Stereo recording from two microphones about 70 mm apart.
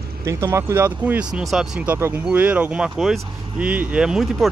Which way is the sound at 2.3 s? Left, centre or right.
Right.